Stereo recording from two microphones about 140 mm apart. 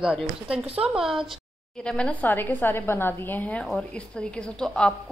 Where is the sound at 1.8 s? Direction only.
5° left (ahead or behind).